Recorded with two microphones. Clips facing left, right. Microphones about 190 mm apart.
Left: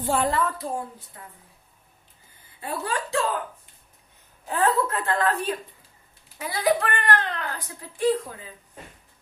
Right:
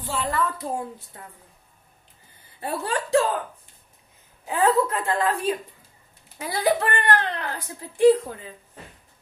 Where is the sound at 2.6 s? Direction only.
30° right (ahead or behind).